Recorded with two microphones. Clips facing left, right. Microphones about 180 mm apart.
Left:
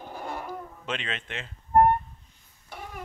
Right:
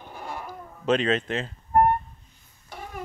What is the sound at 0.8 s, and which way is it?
Speech, 40° right (ahead or behind).